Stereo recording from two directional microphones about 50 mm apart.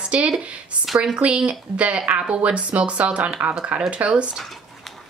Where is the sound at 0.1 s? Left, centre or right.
Right.